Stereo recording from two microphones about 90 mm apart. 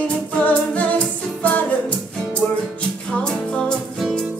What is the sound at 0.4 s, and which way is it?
A capella, 15° left (ahead or behind).